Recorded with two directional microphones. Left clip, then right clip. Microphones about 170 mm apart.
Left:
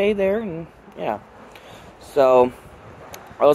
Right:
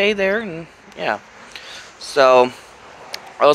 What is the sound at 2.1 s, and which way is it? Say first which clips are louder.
Speech: right 3 dB; 10° left (ahead or behind).